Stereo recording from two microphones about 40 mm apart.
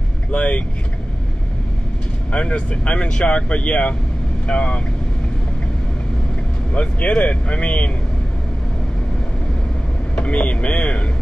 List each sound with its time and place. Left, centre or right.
0.3 s speech: left
2.3 s speech: left
6.7 s speech: left
10.1 s speech: left